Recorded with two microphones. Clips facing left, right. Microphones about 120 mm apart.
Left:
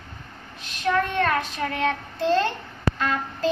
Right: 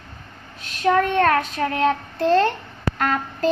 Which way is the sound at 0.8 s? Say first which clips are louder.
Right 5 dB; 50° right (ahead or behind).